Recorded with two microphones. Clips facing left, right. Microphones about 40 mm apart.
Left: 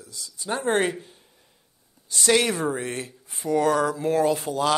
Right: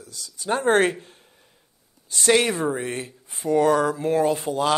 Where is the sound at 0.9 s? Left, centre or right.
Right.